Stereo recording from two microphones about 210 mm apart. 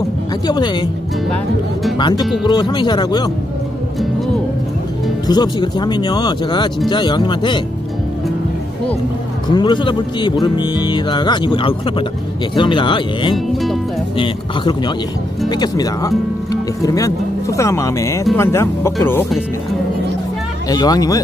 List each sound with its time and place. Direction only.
0.5 s speech: 20° left (ahead or behind)
1.3 s speech: centre (ahead or behind)
2.0 s speech: 20° left (ahead or behind)
5.2 s speech: 20° left (ahead or behind)
9.5 s speech: 20° left (ahead or behind)
20.6 s speech: 20° left (ahead or behind)